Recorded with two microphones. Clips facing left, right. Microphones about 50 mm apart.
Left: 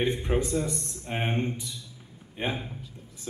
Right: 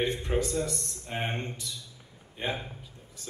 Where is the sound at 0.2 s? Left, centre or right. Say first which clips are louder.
Left 2 dB; centre.